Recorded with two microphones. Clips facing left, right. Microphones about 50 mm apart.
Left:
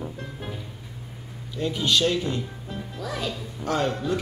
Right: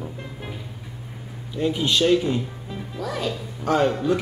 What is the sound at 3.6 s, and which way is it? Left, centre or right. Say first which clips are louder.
Speech: right 5 dB; centre.